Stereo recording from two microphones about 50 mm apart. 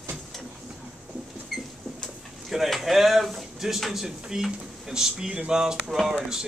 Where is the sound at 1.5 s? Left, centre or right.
Centre.